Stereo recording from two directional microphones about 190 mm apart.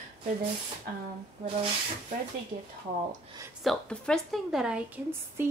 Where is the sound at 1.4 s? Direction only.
30° right (ahead or behind).